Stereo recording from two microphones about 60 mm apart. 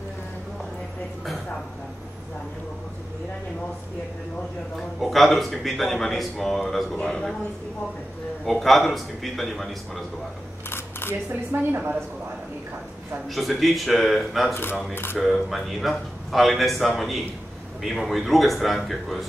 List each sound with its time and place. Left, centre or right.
4.7 s a man's voice: centre
8.5 s speech: centre
10.7 s a sound: left
11.7 s a woman's voice: right
13.3 s speech: centre
14.5 s speech: left
15.1 s speech: centre